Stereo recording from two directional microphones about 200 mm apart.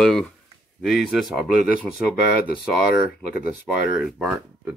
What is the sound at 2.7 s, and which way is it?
Speech, centre (ahead or behind).